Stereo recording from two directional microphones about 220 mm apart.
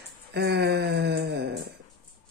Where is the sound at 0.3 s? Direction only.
50° right (ahead or behind).